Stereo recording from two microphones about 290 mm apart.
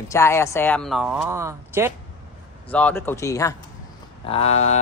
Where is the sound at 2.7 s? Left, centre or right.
Centre.